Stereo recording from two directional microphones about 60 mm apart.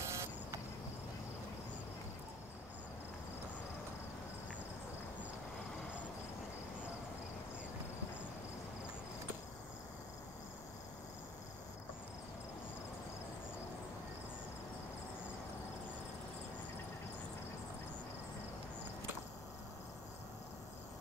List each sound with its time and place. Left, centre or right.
0.0 s vehicle: right